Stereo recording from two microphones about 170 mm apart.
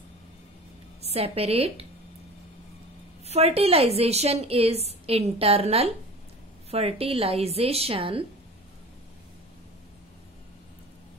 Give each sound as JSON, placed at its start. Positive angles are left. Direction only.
{"t": 1.0, "sound": "a woman's voice", "side_deg": -35}
{"t": 3.3, "sound": "a woman's voice", "side_deg": -35}